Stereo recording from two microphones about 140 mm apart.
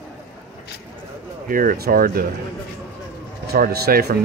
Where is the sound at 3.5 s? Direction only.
90° right.